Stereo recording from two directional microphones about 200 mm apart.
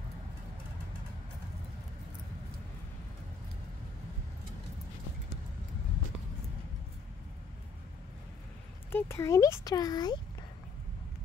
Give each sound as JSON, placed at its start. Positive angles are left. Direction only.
{"t": 8.9, "sound": "speech", "side_deg": 15}